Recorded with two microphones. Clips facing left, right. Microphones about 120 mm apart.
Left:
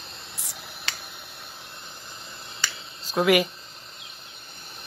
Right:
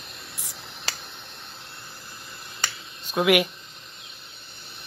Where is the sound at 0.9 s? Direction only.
35° right (ahead or behind).